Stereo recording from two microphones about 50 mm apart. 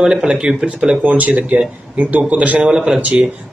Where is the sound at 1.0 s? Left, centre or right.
Right.